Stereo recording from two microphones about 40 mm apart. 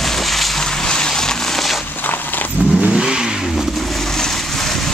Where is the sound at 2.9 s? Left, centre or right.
Centre.